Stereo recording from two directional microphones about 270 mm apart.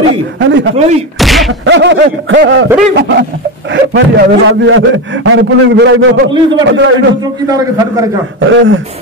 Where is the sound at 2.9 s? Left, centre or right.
Right.